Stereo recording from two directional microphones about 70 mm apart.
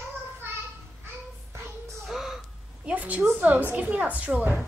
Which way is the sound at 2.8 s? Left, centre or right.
Right.